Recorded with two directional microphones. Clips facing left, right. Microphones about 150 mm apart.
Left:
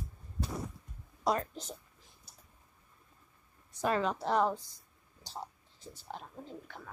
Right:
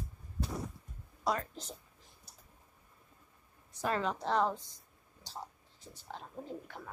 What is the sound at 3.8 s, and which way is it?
Speech, 15° left (ahead or behind).